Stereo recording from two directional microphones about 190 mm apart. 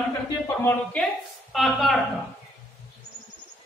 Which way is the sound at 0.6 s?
10° left (ahead or behind).